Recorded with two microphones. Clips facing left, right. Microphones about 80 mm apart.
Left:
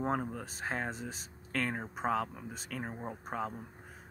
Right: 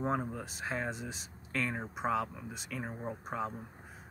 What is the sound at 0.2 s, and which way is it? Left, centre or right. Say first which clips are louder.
Speech: even; right.